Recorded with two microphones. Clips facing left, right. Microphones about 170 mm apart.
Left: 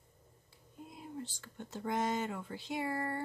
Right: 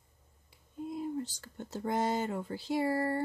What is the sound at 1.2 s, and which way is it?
Speech, 40° right (ahead or behind).